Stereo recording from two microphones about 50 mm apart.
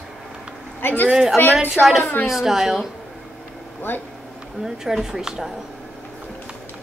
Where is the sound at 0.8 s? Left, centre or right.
Left.